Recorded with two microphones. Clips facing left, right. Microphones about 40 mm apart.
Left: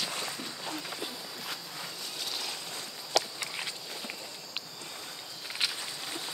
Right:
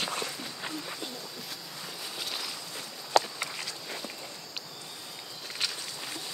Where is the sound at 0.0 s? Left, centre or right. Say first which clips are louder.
Right 3 dB; right.